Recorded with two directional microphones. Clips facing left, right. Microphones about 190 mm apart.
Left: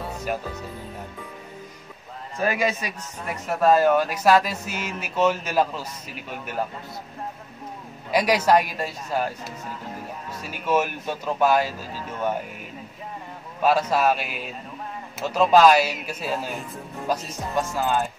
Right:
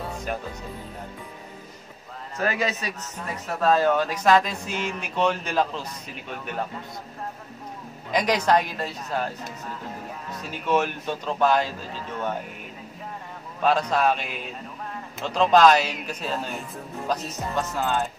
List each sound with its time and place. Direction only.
0.3 s a man's voice: 5° left (ahead or behind)
2.3 s a man's voice: 10° left (ahead or behind)
8.1 s a man's voice: 10° left (ahead or behind)
10.5 s a man's voice: 10° left (ahead or behind)
13.6 s a man's voice: 5° left (ahead or behind)